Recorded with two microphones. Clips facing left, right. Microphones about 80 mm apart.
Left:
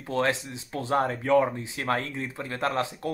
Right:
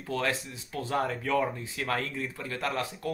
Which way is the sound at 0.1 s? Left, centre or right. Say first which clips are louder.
Left 4 dB; left.